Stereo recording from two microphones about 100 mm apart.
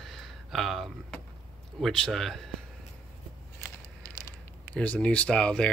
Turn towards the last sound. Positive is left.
turn(degrees=10)  # may be behind; listen again after turning